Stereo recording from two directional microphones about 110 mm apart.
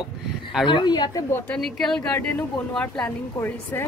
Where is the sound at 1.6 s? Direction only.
5° left (ahead or behind); by 3.9 s 20° left (ahead or behind).